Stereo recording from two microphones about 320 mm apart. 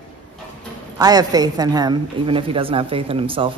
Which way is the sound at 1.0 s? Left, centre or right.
Centre.